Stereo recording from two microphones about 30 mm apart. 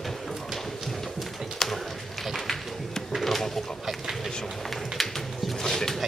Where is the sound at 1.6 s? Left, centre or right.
Centre.